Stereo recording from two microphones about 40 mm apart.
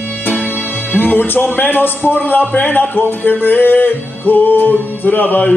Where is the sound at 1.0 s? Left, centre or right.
Left.